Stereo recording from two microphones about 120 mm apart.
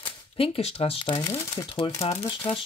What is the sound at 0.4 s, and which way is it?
Speech, 55° left (ahead or behind).